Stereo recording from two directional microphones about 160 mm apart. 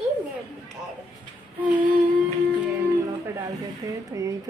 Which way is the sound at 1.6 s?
10° right (ahead or behind).